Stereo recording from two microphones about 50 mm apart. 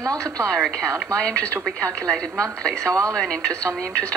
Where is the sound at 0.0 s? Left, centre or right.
Right.